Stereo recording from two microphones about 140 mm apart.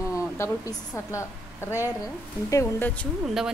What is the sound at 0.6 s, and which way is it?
A woman's voice, 20° left (ahead or behind).